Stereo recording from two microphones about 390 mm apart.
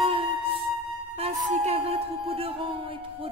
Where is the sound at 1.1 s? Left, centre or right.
Centre.